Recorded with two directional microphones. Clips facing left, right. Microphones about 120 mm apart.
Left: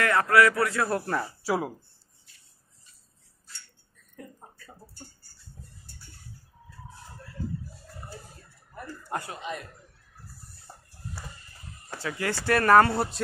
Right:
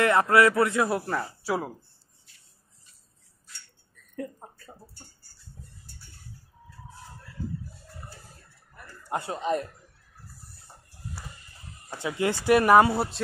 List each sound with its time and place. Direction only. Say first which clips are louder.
0.0 s speech: right 1 dB; 20° right (ahead or behind)
0.8 s speech: even; 5° right (ahead or behind)
4.4 s a sound: right 4 dB; 75° right (ahead or behind)
9.0 s chuckle: right 3 dB; 20° right (ahead or behind)
9.3 s speech: right 8 dB; 40° right (ahead or behind)
11.9 s speech: right 4 dB; 20° right (ahead or behind)